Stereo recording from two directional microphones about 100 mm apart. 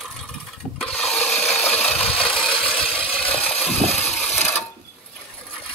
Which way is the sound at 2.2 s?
5° left (ahead or behind).